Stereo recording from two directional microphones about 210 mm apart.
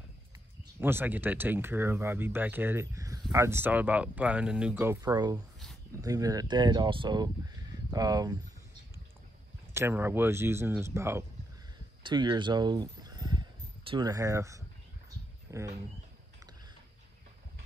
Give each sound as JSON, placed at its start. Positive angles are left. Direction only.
{"t": 0.7, "sound": "speech", "side_deg": -10}
{"t": 9.8, "sound": "speech", "side_deg": -10}